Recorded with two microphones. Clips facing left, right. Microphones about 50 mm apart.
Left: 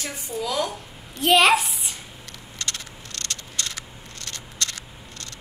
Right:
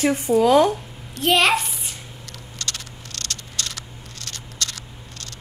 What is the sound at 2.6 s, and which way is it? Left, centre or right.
Frog, right.